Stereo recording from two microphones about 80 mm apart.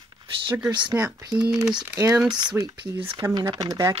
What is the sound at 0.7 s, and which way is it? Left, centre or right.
Speech, right.